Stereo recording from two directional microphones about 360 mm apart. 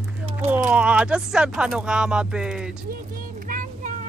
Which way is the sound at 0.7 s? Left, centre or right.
Centre.